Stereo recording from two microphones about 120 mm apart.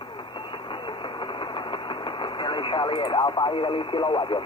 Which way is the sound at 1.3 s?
45° left (ahead or behind).